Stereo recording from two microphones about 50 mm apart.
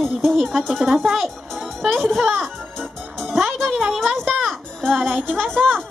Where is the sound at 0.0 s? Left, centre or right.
Centre.